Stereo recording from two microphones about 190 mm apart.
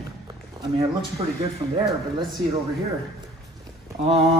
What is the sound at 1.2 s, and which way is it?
Speech, 25° right (ahead or behind).